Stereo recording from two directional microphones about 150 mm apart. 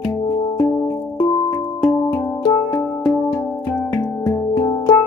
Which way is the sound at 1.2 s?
20° left (ahead or behind).